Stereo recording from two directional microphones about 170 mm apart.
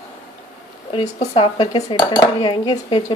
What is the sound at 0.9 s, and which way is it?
Speech, 40° left (ahead or behind).